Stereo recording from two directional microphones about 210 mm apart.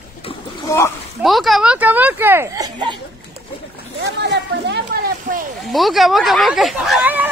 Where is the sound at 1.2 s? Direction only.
Centre (ahead or behind); by 3.0 s 20° right (ahead or behind).